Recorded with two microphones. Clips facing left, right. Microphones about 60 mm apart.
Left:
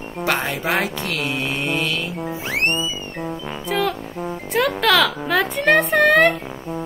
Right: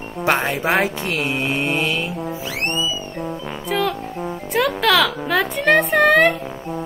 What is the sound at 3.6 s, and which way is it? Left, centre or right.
A child's voice, centre.